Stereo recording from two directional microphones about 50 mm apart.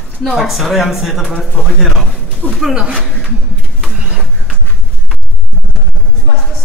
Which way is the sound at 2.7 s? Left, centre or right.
Centre.